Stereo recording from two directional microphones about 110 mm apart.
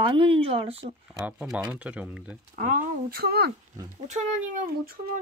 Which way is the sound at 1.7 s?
10° right (ahead or behind).